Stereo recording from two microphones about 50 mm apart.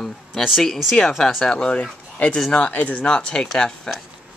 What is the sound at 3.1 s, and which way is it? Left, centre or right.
Speech, centre.